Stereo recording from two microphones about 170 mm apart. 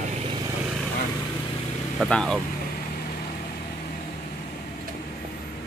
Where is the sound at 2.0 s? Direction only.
5° left (ahead or behind).